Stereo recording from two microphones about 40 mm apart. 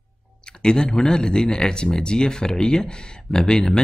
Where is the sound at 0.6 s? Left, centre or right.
Left.